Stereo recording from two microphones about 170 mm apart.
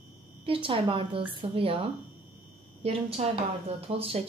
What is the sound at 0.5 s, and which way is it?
Speech, 30° right (ahead or behind).